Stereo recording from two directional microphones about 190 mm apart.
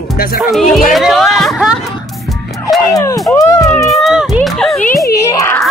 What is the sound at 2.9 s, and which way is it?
Speech, 20° left (ahead or behind).